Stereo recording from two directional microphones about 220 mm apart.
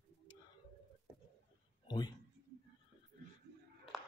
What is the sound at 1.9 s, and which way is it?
Speech, 20° left (ahead or behind).